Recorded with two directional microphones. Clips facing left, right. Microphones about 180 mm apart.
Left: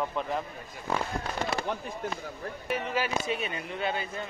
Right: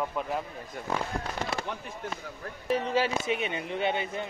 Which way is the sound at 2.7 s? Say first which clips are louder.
Right 4 dB; 30° right (ahead or behind).